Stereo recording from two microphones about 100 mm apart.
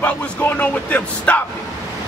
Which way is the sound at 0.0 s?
15° left (ahead or behind).